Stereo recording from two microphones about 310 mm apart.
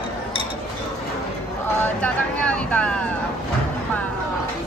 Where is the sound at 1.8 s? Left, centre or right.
Centre.